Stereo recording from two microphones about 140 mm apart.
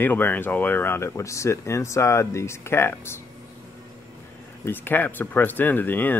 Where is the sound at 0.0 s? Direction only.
15° left (ahead or behind).